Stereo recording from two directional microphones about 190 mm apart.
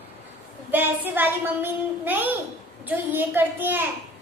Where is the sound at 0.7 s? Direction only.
10° right (ahead or behind).